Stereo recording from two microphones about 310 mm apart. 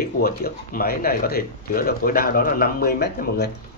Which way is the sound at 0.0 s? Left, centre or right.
Left.